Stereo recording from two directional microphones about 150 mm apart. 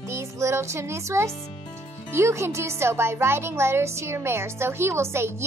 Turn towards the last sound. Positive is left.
turn(degrees=-15)  # may be behind; listen again after turning